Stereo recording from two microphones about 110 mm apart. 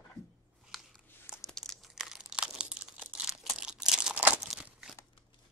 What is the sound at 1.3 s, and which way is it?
Crumpling, centre (ahead or behind).